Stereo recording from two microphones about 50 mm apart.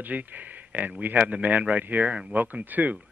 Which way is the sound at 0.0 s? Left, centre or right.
Right.